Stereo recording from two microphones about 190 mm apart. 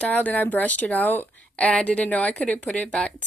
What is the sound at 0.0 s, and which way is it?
A woman's voice, 10° left (ahead or behind).